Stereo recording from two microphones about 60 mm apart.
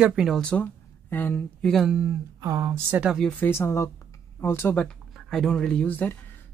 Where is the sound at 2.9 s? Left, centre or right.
Right.